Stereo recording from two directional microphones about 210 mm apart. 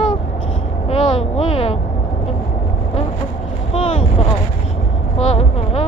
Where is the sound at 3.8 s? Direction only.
30° left (ahead or behind).